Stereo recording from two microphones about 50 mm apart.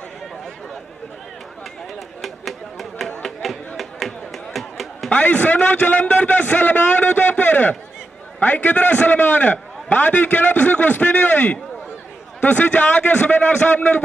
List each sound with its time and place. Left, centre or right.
2.2 s a sound: centre
3.2 s music: centre
5.1 s a man's voice: left